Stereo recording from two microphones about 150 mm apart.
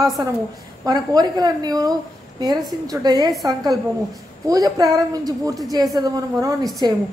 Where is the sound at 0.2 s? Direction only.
25° right (ahead or behind).